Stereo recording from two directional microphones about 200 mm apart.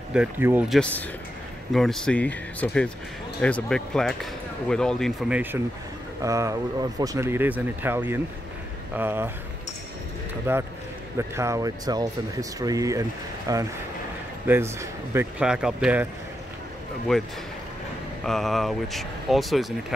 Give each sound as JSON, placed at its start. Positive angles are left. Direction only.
{"t": 0.1, "sound": "speech", "side_deg": -10}
{"t": 0.7, "sound": "speech", "side_deg": 5}
{"t": 10.5, "sound": "speech", "side_deg": -10}
{"t": 17.1, "sound": "speech", "side_deg": 0}